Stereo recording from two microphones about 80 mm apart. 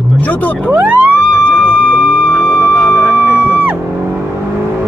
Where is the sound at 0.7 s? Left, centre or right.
Centre.